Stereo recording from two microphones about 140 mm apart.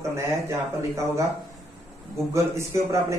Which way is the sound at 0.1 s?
20° right (ahead or behind).